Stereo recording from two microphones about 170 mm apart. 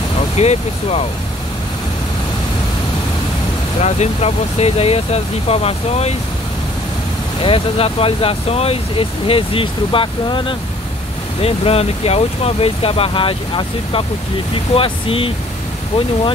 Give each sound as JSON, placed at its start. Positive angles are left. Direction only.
{"t": 0.4, "sound": "speech", "side_deg": 40}
{"t": 3.8, "sound": "speech", "side_deg": 40}
{"t": 7.4, "sound": "speech", "side_deg": 35}